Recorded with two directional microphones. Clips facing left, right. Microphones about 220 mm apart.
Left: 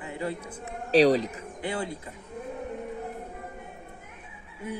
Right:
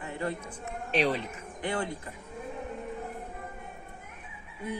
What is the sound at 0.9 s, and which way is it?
Speech, 35° left (ahead or behind).